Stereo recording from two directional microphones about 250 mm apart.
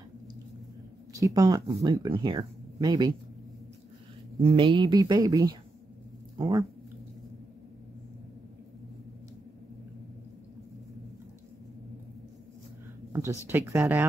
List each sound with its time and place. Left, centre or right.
1.1 s speech: centre
4.4 s speech: right
13.1 s speech: centre